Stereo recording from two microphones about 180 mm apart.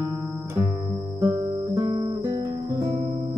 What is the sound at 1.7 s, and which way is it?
Guitar, 20° right (ahead or behind).